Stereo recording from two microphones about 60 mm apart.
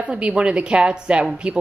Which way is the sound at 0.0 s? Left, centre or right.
Centre.